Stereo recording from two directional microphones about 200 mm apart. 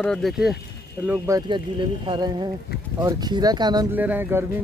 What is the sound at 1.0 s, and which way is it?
Speech, 15° right (ahead or behind).